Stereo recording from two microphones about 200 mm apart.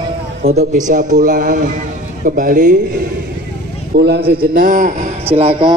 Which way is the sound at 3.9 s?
55° right (ahead or behind).